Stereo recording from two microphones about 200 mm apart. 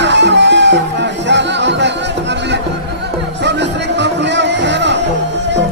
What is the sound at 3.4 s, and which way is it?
Music, 60° right (ahead or behind).